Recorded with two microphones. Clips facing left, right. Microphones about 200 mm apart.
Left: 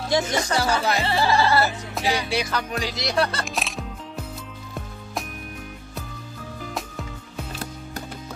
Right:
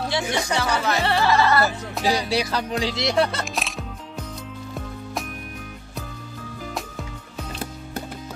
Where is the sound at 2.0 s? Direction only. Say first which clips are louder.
Right 2 dB; 35° right (ahead or behind).